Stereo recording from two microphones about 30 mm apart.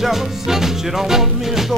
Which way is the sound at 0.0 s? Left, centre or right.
Centre.